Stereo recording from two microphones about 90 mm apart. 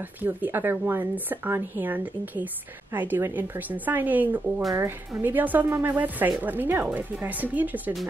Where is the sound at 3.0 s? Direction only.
20° right (ahead or behind).